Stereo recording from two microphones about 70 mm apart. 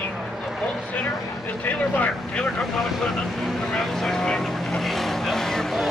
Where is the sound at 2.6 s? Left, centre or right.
Centre.